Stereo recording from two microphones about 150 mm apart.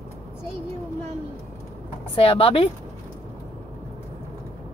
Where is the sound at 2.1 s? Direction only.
35° left (ahead or behind).